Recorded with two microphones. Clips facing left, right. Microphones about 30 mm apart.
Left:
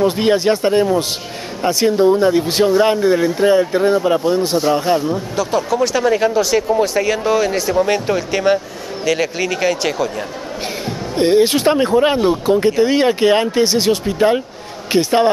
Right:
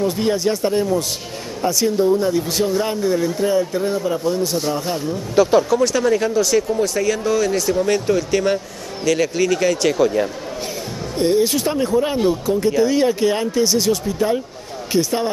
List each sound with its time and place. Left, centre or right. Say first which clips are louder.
0.0 s speech: left 4 dB; left
5.3 s speech: right 8 dB; centre
5.7 s speech: left 1 dB; centre
9.9 s speech: right 4 dB; centre
10.9 s speech: left 4 dB; left